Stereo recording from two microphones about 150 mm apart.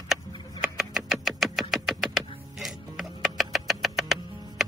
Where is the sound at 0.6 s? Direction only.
Centre (ahead or behind).